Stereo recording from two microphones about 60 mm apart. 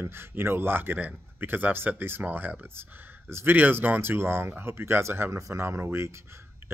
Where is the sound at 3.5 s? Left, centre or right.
Right.